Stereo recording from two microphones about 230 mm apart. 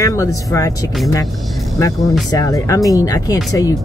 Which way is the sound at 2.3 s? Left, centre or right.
Centre.